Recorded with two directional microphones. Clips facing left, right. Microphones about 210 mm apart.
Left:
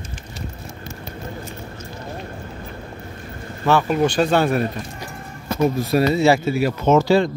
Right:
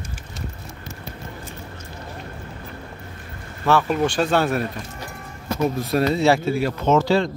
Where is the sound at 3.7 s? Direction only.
Centre (ahead or behind).